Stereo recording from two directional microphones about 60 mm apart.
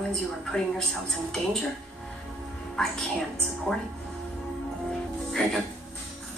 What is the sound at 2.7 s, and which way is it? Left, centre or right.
Speech, centre.